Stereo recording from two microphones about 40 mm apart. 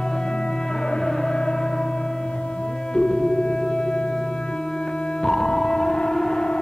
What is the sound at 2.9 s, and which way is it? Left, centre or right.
Music, centre.